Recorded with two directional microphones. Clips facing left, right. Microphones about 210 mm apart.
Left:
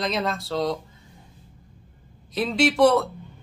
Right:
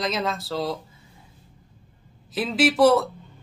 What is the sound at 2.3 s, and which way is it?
Speech, 5° right (ahead or behind).